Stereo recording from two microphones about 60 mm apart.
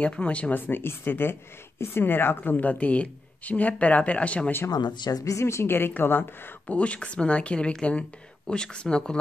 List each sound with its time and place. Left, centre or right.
0.0 s a woman's voice: left
0.6 s a woman's voice: left
4.6 s a woman's voice: left
6.7 s a woman's voice: left